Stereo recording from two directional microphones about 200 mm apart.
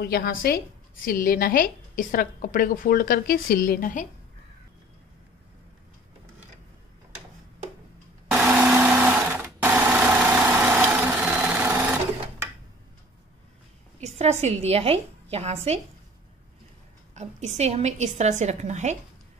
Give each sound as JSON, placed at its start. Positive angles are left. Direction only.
{"t": 0.0, "sound": "a woman's voice", "side_deg": 50}
{"t": 8.3, "sound": "blender", "side_deg": -10}
{"t": 14.0, "sound": "a woman's voice", "side_deg": -35}
{"t": 17.1, "sound": "a woman's voice", "side_deg": -35}